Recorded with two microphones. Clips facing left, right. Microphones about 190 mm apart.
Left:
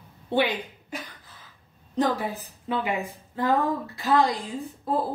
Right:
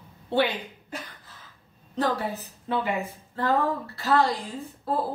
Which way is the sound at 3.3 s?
15° left (ahead or behind).